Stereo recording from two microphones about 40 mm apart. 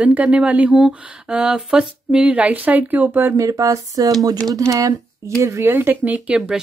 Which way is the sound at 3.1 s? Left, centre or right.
Right.